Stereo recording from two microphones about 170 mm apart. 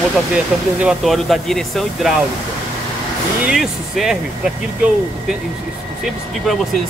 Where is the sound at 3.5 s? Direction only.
Centre (ahead or behind).